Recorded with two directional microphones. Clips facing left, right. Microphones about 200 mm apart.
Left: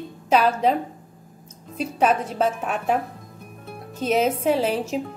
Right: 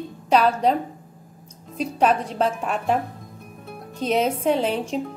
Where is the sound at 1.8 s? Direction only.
5° left (ahead or behind).